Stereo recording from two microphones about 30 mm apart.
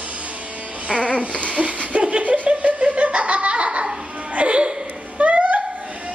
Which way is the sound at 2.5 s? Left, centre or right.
Right.